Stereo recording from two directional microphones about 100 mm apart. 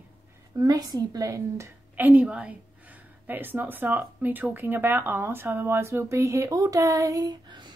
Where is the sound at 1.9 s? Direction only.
15° right (ahead or behind).